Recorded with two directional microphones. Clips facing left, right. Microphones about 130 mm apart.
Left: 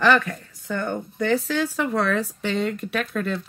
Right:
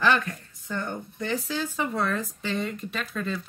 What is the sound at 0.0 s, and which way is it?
A woman's voice, 75° left (ahead or behind).